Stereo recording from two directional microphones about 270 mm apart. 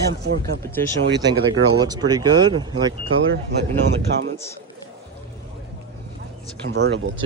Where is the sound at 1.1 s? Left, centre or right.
Centre.